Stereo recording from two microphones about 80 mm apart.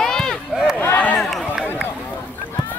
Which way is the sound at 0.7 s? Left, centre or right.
Left.